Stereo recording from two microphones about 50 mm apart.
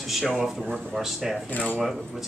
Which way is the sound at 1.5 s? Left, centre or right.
Left.